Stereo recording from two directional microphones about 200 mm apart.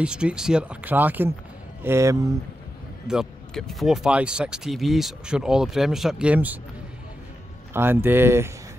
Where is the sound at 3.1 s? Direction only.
Centre (ahead or behind).